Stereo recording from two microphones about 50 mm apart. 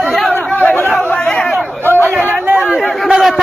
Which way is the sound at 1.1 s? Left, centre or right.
Centre.